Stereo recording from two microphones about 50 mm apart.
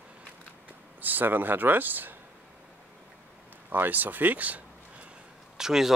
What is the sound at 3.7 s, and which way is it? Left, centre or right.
Speech, right.